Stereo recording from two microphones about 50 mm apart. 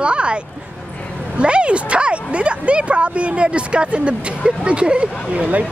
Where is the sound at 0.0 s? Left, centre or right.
Right.